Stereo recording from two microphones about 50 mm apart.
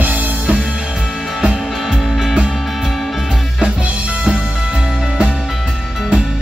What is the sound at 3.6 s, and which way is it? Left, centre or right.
Drum kit, centre.